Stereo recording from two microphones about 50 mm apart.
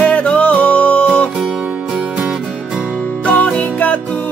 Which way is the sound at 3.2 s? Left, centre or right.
Left.